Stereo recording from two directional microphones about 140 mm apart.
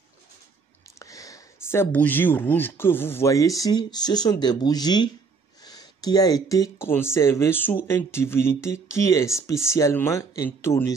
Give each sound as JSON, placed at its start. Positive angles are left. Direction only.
{"t": 0.9, "sound": "speech", "side_deg": 25}